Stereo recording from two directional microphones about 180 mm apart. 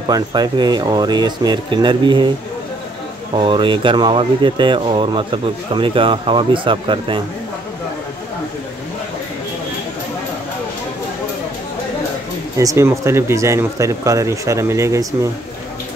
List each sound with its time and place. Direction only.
0.1 s speech: 25° right (ahead or behind)
3.3 s speech: 25° right (ahead or behind)
12.5 s speech: 15° right (ahead or behind)